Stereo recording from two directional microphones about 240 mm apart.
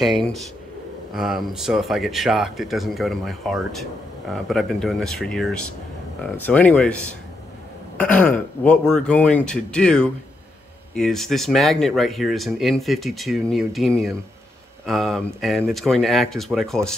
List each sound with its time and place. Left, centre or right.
1.1 s speech: centre